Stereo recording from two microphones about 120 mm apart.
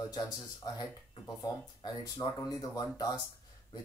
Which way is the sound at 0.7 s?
35° left (ahead or behind).